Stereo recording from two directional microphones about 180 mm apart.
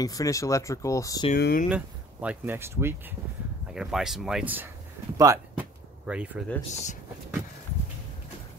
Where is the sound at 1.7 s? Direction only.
10° right (ahead or behind).